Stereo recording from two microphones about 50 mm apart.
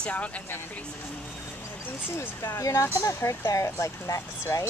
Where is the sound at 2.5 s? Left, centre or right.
Left.